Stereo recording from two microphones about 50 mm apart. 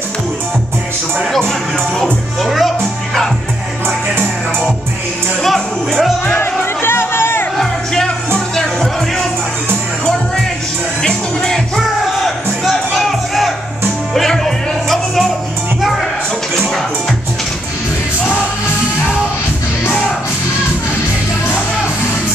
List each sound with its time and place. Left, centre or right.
2.4 s music: centre
5.4 s music: centre
6.2 s music: left
7.5 s music: centre
11.0 s music: centre